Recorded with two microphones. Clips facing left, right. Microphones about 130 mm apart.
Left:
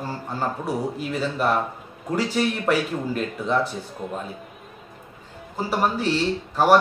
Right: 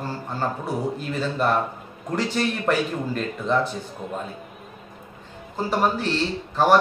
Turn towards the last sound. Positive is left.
turn(degrees=10)  # may be behind; listen again after turning